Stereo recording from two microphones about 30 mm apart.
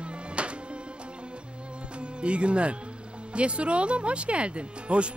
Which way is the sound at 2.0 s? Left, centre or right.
Right.